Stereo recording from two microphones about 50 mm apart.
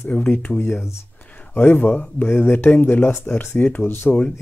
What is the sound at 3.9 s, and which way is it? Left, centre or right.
Speech, left.